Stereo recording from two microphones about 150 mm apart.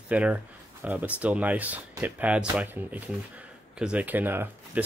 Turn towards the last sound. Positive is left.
turn(degrees=-15)  # may be behind; listen again after turning